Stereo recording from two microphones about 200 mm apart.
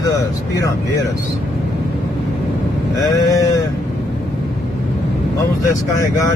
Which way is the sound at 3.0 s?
20° left (ahead or behind).